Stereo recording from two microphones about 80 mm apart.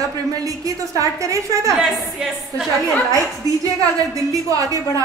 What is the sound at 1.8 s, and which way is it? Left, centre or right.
Speech, centre.